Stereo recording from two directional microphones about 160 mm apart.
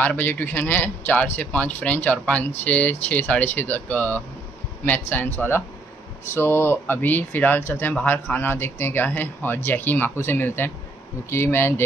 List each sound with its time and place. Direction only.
0.0 s a man's voice: 10° left (ahead or behind)